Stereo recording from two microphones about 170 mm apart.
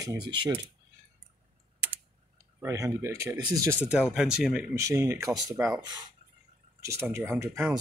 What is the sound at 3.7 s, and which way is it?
Speech, 5° right (ahead or behind).